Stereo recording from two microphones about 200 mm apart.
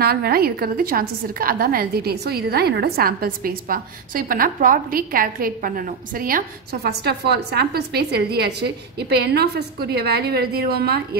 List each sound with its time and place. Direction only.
0.0 s a woman's voice: 50° right (ahead or behind)